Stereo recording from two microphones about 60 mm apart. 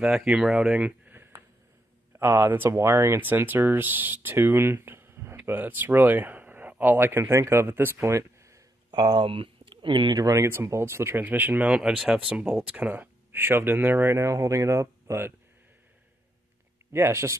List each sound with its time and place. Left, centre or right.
0.0 s speech: centre
0.7 s speech: right
1.1 s a sound: right
2.1 s speech: right
2.7 s speech: right
7.6 s speech: right
10.1 s speech: right
10.4 s speech: right
11.2 s speech: right
11.6 s speech: centre; by 14.1 s right
14.1 s speech: right
16.9 s speech: right